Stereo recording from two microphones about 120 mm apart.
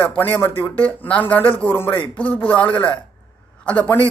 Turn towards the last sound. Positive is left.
turn(degrees=10)  # may be behind; listen again after turning